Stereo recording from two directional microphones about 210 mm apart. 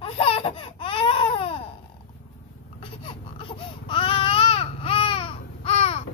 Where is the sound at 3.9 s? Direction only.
25° left (ahead or behind).